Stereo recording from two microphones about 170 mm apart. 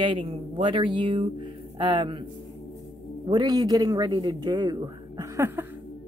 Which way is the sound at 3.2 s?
25° right (ahead or behind).